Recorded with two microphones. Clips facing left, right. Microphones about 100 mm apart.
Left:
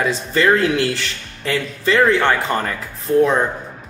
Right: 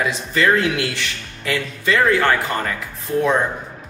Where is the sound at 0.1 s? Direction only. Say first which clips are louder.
Left 2 dB; 35° left (ahead or behind).